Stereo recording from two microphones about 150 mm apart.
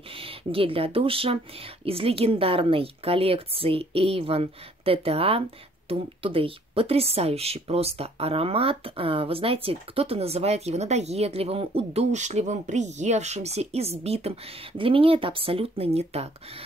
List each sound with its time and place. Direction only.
0.1 s a woman's voice: 40° right (ahead or behind)